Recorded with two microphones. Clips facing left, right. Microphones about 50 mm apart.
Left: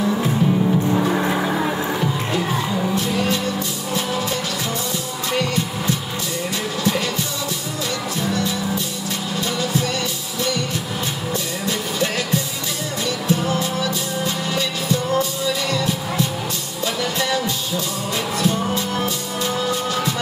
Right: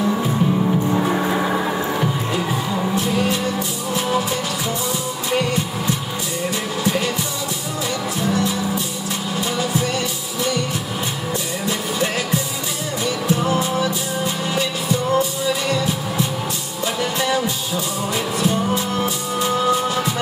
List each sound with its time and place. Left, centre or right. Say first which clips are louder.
0.9 s music: even; centre
8.2 s music: right 3 dB; centre
13.0 s music: right 1 dB; centre
15.1 s music: right 1 dB; centre
17.0 s music: right 2 dB; centre
18.9 s music: right 2 dB; centre